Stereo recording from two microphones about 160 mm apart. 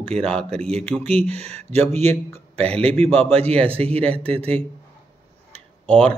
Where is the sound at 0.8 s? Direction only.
10° left (ahead or behind).